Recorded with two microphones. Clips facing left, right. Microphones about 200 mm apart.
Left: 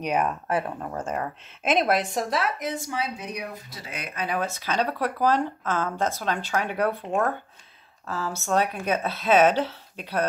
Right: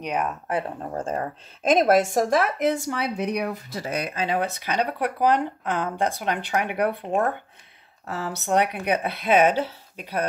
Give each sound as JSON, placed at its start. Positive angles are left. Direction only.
{"t": 0.0, "sound": "speech", "side_deg": 5}
{"t": 0.5, "sound": "speech", "side_deg": -20}
{"t": 0.8, "sound": "speech", "side_deg": -35}
{"t": 3.8, "sound": "speech", "side_deg": -40}
{"t": 8.1, "sound": "speech", "side_deg": -20}